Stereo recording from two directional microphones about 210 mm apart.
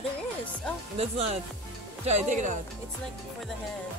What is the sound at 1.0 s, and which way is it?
Speech, 30° right (ahead or behind).